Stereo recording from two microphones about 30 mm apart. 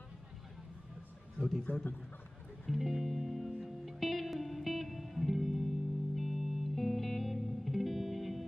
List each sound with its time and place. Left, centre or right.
1.7 s a man's voice: left
2.7 s music: centre